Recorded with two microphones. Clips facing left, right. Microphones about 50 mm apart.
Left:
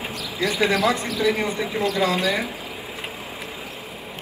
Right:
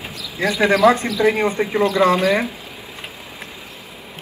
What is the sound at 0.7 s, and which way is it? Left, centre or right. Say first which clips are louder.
A man's voice: right 7 dB; right.